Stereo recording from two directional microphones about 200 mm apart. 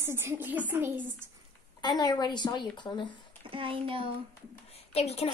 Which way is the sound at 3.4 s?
25° right (ahead or behind).